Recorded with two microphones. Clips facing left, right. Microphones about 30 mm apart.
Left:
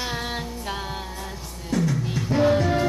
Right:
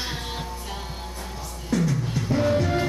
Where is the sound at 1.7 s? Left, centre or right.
Centre.